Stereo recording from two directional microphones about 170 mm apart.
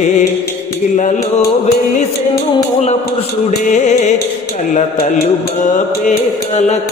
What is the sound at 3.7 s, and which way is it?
Mantra, 45° left (ahead or behind).